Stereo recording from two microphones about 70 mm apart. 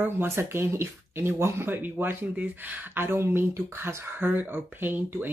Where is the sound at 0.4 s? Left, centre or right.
Right.